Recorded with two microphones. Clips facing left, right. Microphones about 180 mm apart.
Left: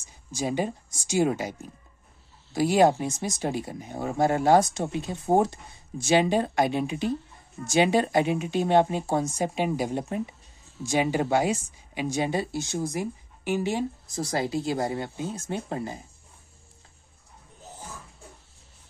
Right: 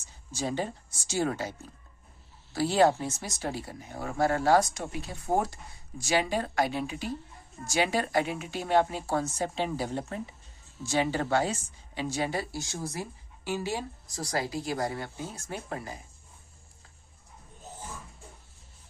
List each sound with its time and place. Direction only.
0.0 s speech: 15° left (ahead or behind)